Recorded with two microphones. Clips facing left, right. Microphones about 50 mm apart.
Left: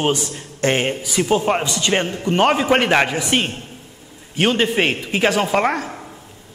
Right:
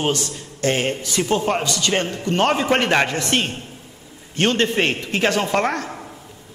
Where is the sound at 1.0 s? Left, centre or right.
Centre.